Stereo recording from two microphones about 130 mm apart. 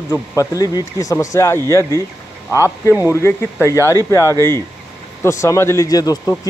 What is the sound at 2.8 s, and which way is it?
Speech, 20° left (ahead or behind).